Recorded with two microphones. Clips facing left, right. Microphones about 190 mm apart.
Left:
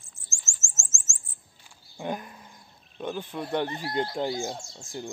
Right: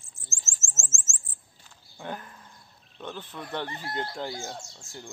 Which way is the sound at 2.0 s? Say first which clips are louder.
Left 5 dB; 15° left (ahead or behind).